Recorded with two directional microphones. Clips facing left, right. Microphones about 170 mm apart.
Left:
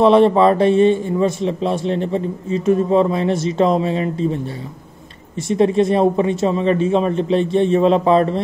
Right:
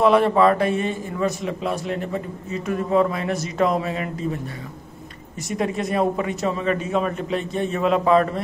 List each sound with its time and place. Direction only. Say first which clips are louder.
0.0 s a man's voice: left 5 dB; 25° left (ahead or behind)
5.5 s a man's voice: left 9 dB; 25° left (ahead or behind)